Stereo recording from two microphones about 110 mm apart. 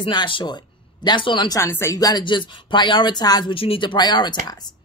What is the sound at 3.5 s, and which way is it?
A woman's voice, 55° left (ahead or behind).